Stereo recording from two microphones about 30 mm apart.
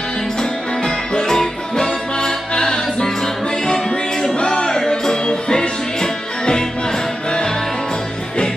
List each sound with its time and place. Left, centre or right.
0.4 s music: left
4.4 s music: left
4.6 s music: centre
5.2 s music: left